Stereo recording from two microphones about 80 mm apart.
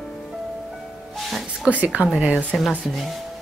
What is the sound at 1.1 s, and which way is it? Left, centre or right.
Speech, centre.